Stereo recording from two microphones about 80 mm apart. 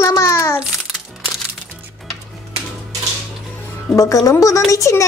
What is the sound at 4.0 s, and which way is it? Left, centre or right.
A woman's voice, left.